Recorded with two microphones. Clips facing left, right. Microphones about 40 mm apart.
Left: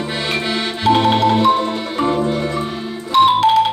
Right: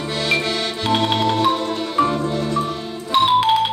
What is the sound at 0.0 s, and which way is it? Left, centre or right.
Music, centre.